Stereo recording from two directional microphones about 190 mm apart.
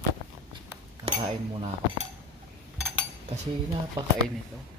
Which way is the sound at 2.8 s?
10° right (ahead or behind).